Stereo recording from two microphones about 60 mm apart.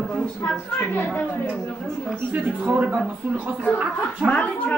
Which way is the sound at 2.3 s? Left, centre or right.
Right.